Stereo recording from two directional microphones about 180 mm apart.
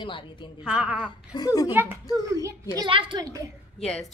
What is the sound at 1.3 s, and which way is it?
Speech, 20° left (ahead or behind).